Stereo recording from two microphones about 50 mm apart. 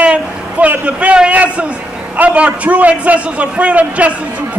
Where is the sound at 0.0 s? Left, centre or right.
Right.